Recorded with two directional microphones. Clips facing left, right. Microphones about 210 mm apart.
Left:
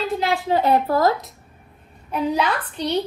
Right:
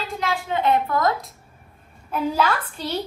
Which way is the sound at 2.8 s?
5° right (ahead or behind).